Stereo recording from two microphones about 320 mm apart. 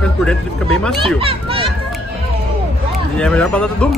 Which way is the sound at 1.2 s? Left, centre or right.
Centre.